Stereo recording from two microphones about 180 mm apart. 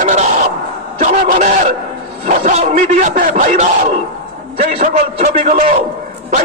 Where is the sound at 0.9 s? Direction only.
40° right (ahead or behind).